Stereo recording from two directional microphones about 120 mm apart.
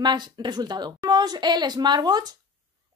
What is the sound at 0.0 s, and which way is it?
A woman's voice, 40° right (ahead or behind).